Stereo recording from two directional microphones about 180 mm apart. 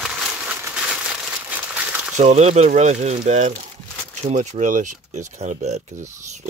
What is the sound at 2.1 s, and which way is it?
Speech, 40° right (ahead or behind).